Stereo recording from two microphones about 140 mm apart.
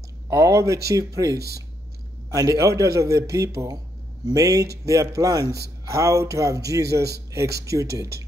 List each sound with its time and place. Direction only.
0.3 s a man's voice: 20° right (ahead or behind)